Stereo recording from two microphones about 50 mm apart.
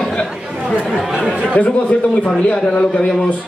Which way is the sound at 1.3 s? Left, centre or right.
Right.